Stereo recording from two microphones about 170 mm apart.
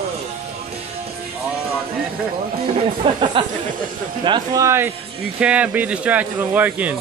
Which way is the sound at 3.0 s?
30° right (ahead or behind).